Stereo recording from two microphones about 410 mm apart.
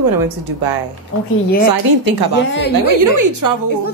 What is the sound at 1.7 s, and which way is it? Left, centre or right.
Speech, right.